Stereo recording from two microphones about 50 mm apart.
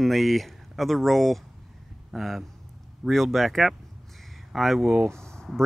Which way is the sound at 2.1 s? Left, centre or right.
Centre.